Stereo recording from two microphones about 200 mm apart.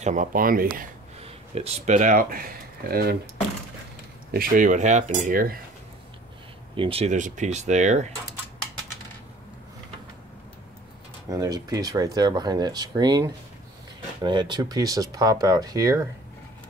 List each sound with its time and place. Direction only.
0.0 s speech: 40° right (ahead or behind)
1.2 s speech: 30° right (ahead or behind); by 3.2 s 50° right (ahead or behind)
4.3 s speech: 45° right (ahead or behind)
6.8 s speech: 30° right (ahead or behind)
11.2 s speech: 20° right (ahead or behind)